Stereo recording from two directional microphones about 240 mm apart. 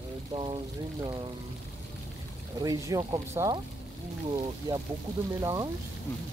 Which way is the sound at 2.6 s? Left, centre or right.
Centre.